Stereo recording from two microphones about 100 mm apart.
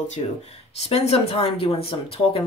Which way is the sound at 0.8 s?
80° left.